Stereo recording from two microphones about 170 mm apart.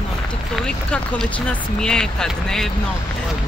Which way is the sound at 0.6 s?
5° left (ahead or behind).